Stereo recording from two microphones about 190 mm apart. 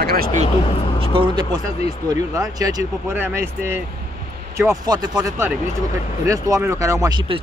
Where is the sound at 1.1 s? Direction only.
25° right (ahead or behind).